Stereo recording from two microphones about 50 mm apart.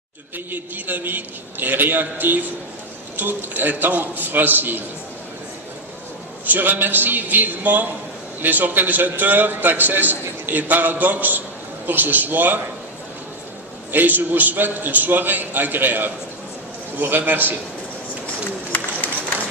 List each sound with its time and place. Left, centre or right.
0.5 s a man's voice: right
6.4 s a man's voice: right
13.9 s a man's voice: right
17.2 s a man's voice: right